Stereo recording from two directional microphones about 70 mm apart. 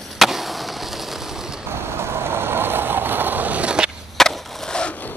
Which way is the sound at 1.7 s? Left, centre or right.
Right.